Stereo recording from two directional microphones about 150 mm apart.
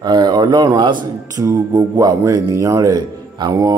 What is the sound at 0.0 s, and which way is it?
Speech, 30° right (ahead or behind).